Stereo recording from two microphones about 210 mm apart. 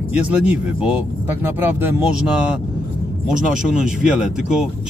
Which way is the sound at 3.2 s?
5° right (ahead or behind).